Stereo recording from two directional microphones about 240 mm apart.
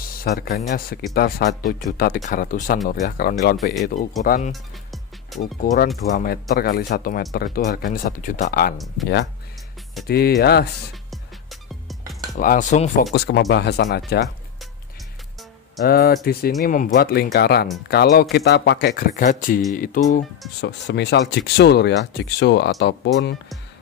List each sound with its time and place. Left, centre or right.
0.2 s speech: left
4.5 s music: centre
5.4 s speech: left
8.7 s speech: centre
9.0 s speech: left
12.4 s speech: left
15.8 s speech: left
20.6 s speech: left